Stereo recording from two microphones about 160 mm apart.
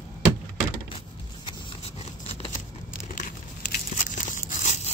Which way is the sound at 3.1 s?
55° left (ahead or behind).